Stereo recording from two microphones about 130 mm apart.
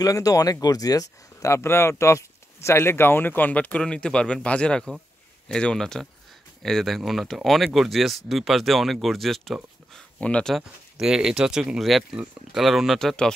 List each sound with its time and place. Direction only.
0.0 s speech: 25° left (ahead or behind); by 13.3 s 5° left (ahead or behind)